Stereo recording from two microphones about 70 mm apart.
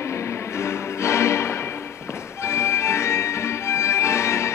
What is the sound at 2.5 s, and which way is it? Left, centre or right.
Music, left.